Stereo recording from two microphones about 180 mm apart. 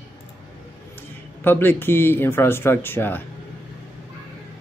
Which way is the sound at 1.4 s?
10° left (ahead or behind).